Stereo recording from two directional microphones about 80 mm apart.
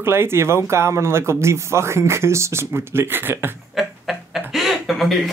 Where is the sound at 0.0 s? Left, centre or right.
Right.